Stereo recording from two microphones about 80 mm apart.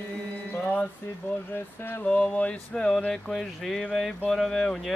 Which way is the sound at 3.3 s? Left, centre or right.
Centre.